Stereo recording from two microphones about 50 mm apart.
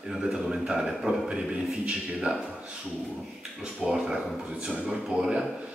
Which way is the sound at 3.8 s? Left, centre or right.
Centre.